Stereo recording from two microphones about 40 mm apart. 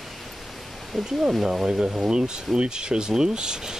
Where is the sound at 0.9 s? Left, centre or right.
Centre.